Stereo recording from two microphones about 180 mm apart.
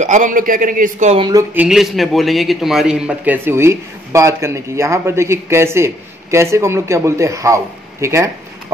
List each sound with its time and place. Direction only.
0.0 s a man's voice: 45° right (ahead or behind)
1.5 s a man's voice: 5° right (ahead or behind)